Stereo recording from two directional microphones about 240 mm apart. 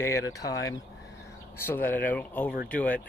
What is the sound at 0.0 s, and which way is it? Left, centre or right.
Speech, centre.